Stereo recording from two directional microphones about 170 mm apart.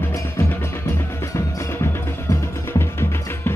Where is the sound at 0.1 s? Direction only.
15° left (ahead or behind).